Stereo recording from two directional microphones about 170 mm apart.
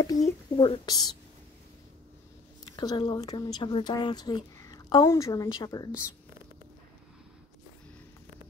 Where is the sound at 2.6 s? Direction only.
25° left (ahead or behind).